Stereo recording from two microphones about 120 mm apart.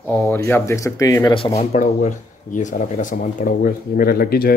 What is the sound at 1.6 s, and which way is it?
Speech, 80° left.